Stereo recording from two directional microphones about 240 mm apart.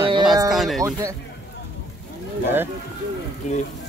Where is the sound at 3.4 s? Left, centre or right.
Left.